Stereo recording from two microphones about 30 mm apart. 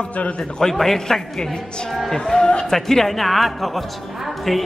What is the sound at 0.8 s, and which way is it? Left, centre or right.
Speech, centre.